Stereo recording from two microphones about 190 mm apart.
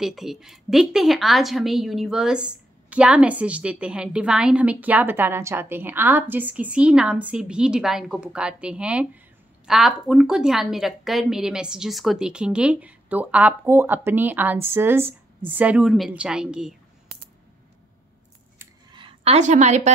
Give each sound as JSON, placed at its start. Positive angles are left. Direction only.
{"t": 0.0, "sound": "a woman's voice", "side_deg": 0}
{"t": 18.9, "sound": "a woman's voice", "side_deg": -30}